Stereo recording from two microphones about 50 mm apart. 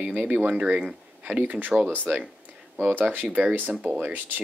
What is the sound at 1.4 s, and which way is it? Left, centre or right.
Speech, right.